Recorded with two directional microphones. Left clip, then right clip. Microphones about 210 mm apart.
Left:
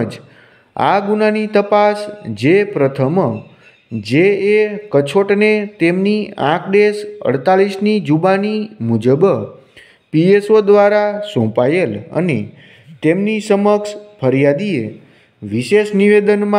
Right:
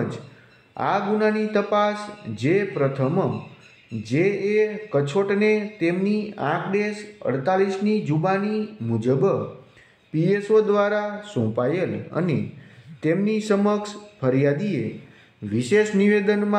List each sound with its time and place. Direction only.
0.7 s speech: 40° left (ahead or behind)